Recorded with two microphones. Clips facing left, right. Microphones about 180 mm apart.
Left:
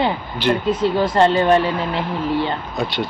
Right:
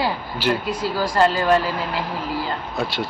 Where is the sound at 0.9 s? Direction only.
25° left (ahead or behind).